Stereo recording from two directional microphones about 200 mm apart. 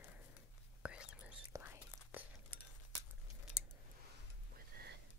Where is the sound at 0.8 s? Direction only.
5° right (ahead or behind).